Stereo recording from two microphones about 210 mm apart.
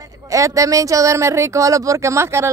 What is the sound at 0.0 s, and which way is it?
Speech, 15° right (ahead or behind).